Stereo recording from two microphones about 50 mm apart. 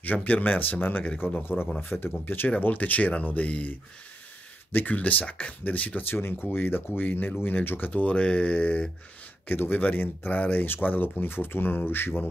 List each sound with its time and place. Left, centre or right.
0.0 s speech: left
4.7 s speech: left
6.0 s speech: left